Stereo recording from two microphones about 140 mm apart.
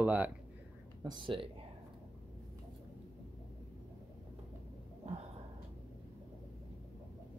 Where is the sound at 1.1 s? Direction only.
35° right (ahead or behind).